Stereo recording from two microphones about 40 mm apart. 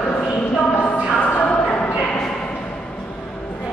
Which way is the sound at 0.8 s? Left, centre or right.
Left.